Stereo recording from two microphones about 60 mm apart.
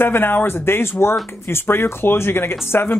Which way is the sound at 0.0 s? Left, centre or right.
Left.